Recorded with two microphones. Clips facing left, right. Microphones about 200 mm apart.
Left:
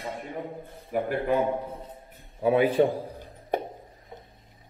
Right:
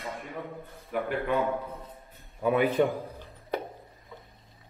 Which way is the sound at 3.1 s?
15° left (ahead or behind).